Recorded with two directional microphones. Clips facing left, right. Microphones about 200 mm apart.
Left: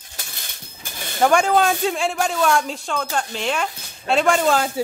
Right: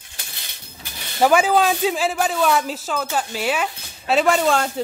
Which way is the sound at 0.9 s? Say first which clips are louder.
Left 5 dB; 50° left (ahead or behind).